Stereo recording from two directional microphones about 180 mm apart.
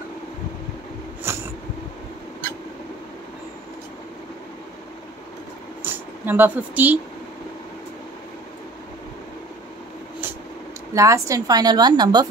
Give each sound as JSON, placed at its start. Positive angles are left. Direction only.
{"t": 1.3, "sound": "a sound", "side_deg": -15}
{"t": 5.9, "sound": "speech", "side_deg": -10}
{"t": 11.0, "sound": "a woman's voice", "side_deg": -15}